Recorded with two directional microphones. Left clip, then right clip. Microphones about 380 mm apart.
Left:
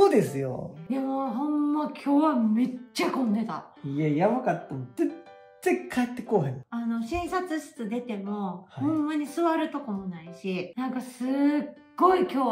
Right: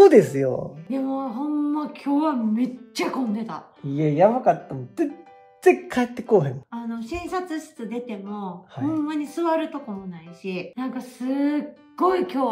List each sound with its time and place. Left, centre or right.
0.0 s speech: right
0.8 s speech: centre
4.0 s speech: right
6.7 s speech: centre